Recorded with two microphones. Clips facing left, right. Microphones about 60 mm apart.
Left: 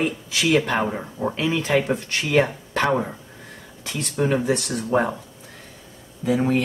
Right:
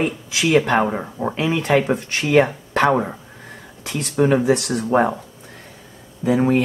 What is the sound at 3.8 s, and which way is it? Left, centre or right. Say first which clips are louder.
Speech: right 5 dB; centre.